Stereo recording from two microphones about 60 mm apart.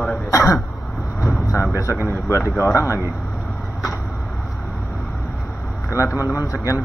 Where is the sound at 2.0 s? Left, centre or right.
Left.